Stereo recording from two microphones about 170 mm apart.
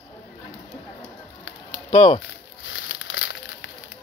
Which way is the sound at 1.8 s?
35° left (ahead or behind).